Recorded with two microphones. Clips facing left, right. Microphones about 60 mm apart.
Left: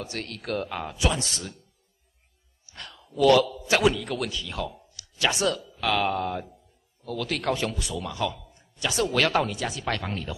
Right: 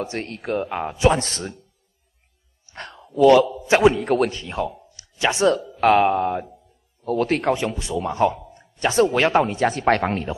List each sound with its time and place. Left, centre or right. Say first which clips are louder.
0.0 s a man's voice: right 7 dB; right
2.6 s a man's voice: right 7 dB; right
7.1 s a man's voice: right 8 dB; right
7.5 s a man's voice: right 5 dB; right